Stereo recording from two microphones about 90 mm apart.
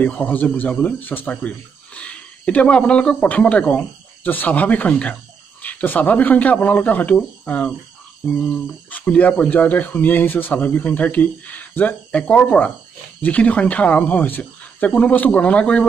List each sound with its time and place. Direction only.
0.0 s speech: 15° left (ahead or behind)